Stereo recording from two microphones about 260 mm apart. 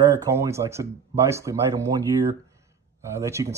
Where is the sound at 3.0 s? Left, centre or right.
Centre.